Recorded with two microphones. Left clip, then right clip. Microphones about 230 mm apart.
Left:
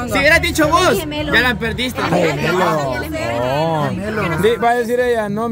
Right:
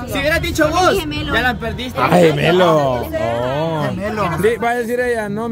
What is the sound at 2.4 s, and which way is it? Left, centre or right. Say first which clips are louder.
Speech: right 4 dB; right.